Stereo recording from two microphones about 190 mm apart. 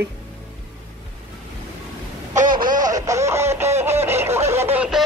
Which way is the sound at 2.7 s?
20° right (ahead or behind).